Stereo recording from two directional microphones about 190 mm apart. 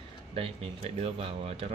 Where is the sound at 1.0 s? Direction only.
30° right (ahead or behind).